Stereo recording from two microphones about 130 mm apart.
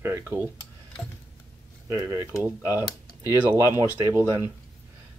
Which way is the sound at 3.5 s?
20° right (ahead or behind).